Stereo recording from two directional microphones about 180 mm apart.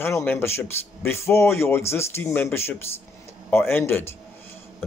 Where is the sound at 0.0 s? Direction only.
10° left (ahead or behind).